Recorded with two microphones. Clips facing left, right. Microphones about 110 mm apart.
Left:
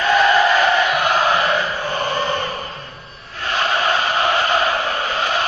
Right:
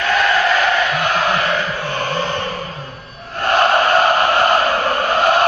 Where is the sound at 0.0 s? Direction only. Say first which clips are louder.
Left 2 dB; 5° left (ahead or behind).